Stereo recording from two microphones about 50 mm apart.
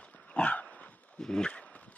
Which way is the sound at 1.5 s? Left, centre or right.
Left.